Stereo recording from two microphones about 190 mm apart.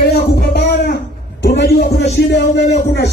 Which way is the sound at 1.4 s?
65° left (ahead or behind).